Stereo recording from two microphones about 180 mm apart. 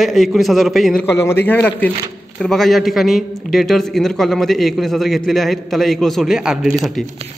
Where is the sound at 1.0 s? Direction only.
15° left (ahead or behind).